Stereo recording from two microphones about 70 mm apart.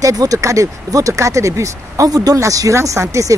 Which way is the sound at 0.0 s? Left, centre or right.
Right.